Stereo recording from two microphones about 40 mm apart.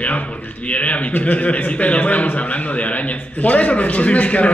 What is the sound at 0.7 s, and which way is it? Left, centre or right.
A man's voice, left.